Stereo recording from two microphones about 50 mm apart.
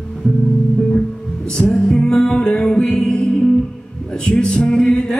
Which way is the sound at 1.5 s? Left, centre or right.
Centre.